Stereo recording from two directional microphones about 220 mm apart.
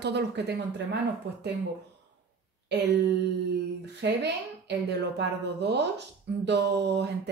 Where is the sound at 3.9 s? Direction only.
50° right (ahead or behind).